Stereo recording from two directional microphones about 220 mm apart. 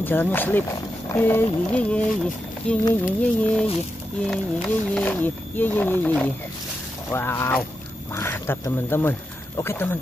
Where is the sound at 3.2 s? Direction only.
5° left (ahead or behind).